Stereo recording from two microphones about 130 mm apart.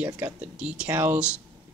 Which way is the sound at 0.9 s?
15° right (ahead or behind).